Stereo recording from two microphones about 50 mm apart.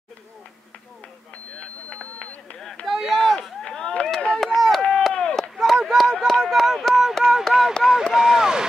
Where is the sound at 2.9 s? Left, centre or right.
Centre.